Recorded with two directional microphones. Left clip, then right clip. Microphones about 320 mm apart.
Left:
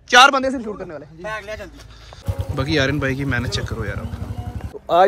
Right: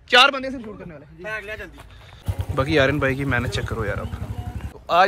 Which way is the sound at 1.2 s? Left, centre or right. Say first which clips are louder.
Left 1 dB; left.